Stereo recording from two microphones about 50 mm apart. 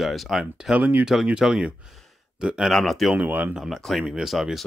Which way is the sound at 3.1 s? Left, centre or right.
Right.